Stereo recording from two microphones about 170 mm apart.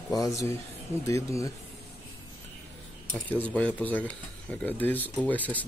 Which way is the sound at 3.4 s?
10° left (ahead or behind).